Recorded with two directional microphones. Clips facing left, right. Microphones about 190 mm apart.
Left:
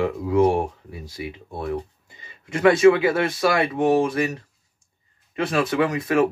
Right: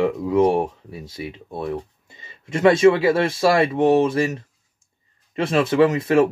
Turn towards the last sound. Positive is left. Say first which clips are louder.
# right 4 dB
turn(degrees=-25)  # may be behind; listen again after turning